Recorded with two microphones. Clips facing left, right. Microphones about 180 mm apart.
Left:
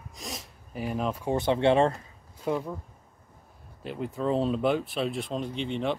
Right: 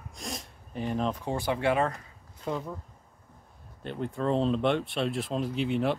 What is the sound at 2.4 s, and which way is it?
Speech, 10° left (ahead or behind).